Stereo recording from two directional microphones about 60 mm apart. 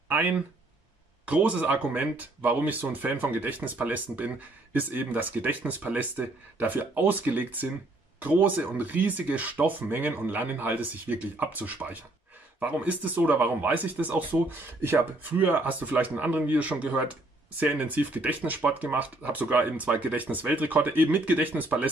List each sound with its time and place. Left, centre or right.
1.2 s speech: right
14.8 s speech: right